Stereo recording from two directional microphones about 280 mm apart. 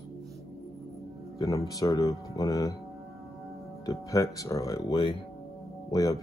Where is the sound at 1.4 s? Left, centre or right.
Centre.